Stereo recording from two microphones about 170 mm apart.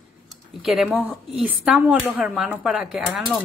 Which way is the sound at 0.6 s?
Centre (ahead or behind).